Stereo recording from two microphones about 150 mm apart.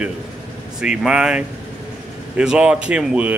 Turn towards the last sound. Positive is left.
turn(degrees=-10)  # may be behind; listen again after turning